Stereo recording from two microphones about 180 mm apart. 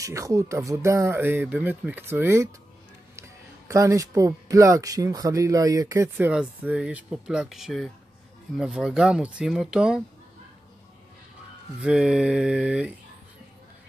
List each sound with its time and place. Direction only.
0.0 s speech: 15° right (ahead or behind)
11.8 s speech: 5° right (ahead or behind)